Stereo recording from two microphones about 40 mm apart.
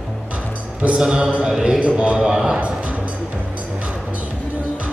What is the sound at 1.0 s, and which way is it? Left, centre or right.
Speech, centre.